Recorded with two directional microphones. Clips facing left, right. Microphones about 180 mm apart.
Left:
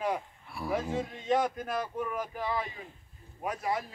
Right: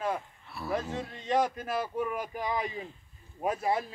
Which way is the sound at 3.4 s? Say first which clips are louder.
Right 3 dB; 30° right (ahead or behind).